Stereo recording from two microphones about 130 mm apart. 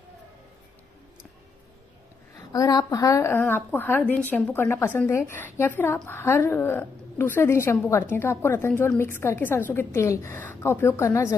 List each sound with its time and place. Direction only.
2.3 s a woman's voice: 30° left (ahead or behind)